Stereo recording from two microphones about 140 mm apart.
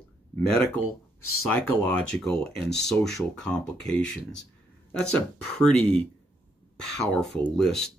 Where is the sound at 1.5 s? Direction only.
15° left (ahead or behind).